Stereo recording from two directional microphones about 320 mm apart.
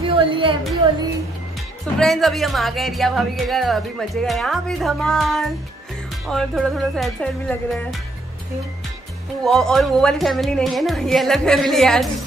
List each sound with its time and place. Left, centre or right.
0.0 s a woman's voice: centre
2.0 s speech: centre
9.4 s speech: centre